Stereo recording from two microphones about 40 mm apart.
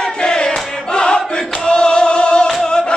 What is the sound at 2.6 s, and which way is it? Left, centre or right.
Music, left.